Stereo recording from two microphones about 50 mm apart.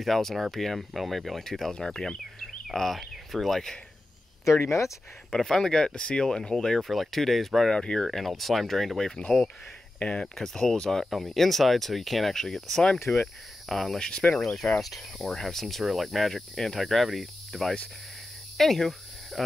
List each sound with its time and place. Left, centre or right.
0.0 s cricket: centre
2.4 s speech: centre
4.6 s speech: left
5.3 s speech: centre
6.8 s cricket: centre
7.8 s speech: centre
8.2 s cricket: centre
9.9 s speech: left
10.3 s speech: centre
11.1 s cricket: centre
13.7 s speech: centre
13.9 s speech: centre
14.8 s cricket: centre
18.6 s speech: centre